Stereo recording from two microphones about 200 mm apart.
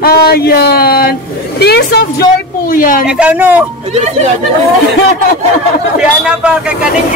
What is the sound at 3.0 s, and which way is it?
Speech, 5° right (ahead or behind).